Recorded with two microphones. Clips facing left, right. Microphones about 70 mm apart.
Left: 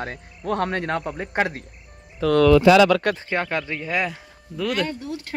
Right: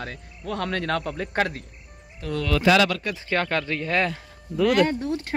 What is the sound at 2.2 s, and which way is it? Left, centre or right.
Speech, left.